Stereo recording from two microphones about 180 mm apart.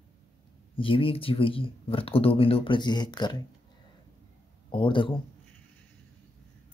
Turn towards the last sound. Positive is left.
turn(degrees=25)  # may be behind; listen again after turning